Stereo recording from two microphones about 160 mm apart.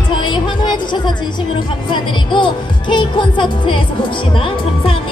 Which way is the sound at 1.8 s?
30° left (ahead or behind).